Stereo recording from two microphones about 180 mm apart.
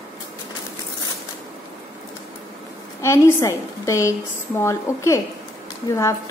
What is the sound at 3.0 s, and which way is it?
A woman's voice, 15° left (ahead or behind).